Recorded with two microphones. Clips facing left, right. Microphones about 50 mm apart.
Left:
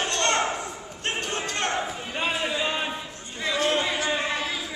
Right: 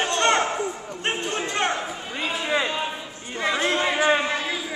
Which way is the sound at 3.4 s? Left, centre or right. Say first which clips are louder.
Right 2 dB; right.